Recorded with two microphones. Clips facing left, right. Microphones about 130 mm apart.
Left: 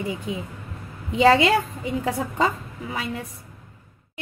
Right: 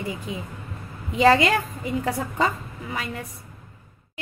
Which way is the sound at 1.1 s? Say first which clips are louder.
Left 1 dB; 25° left (ahead or behind).